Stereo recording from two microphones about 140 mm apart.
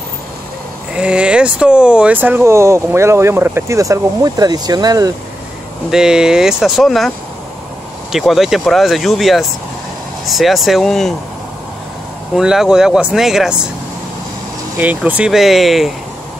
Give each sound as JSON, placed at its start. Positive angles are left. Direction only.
{"t": 0.9, "sound": "speech", "side_deg": -5}
{"t": 5.9, "sound": "speech", "side_deg": -5}
{"t": 8.1, "sound": "speech", "side_deg": 0}
{"t": 12.4, "sound": "speech", "side_deg": -5}
{"t": 14.8, "sound": "speech", "side_deg": -10}